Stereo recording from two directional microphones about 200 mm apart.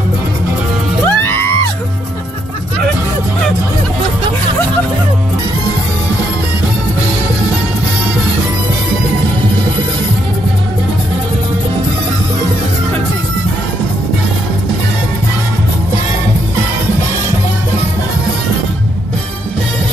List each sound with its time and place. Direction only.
1.0 s music: 10° left (ahead or behind)